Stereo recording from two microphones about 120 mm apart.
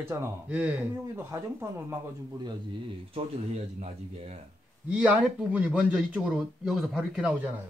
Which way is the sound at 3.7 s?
60° right (ahead or behind).